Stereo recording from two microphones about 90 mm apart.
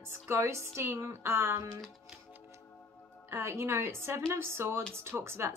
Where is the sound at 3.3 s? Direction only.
30° right (ahead or behind).